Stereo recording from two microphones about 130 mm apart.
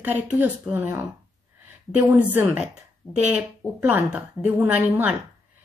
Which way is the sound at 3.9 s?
10° right (ahead or behind).